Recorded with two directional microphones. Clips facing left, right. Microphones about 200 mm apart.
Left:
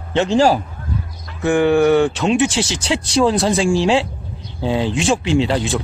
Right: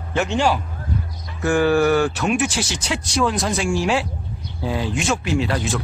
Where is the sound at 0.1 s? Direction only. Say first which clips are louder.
Left 5 dB; 30° left (ahead or behind).